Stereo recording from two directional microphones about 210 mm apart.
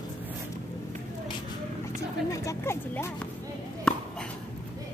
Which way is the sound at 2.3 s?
15° left (ahead or behind).